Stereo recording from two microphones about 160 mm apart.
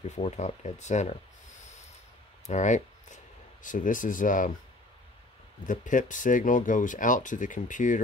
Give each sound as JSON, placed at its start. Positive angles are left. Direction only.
{"t": 0.0, "sound": "speech", "side_deg": 45}
{"t": 2.4, "sound": "speech", "side_deg": 50}
{"t": 5.6, "sound": "speech", "side_deg": 55}